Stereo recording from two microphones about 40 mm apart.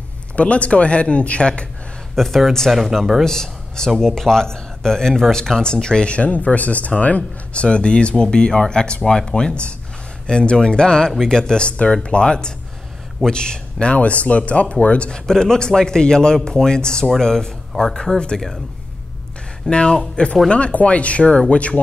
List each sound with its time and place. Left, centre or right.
0.4 s speech: left
2.1 s speech: centre
3.3 s speech: centre; by 15.0 s left
15.0 s speech: centre
19.7 s speech: left